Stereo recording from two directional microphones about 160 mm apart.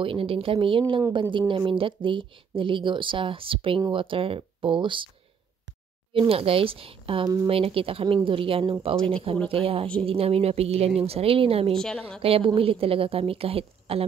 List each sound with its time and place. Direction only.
0.0 s speech: 35° right (ahead or behind)
6.1 s speech: 35° right (ahead or behind)
11.7 s a woman's voice: 5° left (ahead or behind)
12.2 s speech: 35° right (ahead or behind)